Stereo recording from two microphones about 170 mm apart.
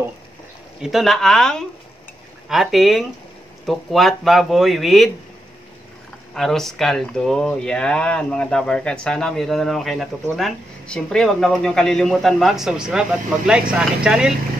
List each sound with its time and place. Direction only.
0.8 s speech: centre (ahead or behind)
6.3 s speech: centre (ahead or behind)